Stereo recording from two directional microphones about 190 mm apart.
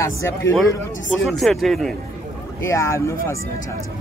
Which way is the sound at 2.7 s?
15° left (ahead or behind).